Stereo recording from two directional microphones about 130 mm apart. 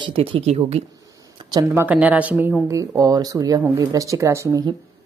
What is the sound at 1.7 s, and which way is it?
Speech, 10° right (ahead or behind).